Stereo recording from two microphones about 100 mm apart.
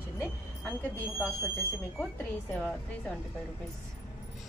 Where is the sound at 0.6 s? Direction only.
20° left (ahead or behind).